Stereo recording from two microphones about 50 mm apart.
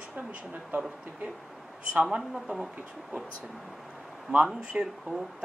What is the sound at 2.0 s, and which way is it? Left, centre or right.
Speech, centre.